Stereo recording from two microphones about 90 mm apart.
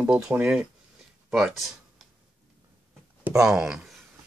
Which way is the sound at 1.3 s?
Centre (ahead or behind).